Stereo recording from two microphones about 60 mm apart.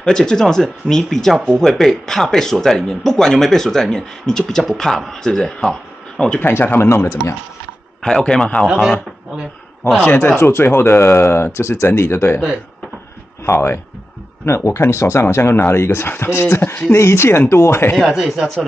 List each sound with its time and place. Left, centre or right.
0.0 s speech: centre
6.4 s speech: left
6.9 s speech: left
8.0 s speech: centre
10.0 s speech: left
13.5 s speech: left
18.0 s speech: centre